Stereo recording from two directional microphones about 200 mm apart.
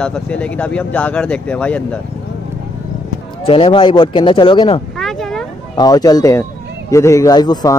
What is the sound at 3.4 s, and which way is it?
Speech, 25° left (ahead or behind).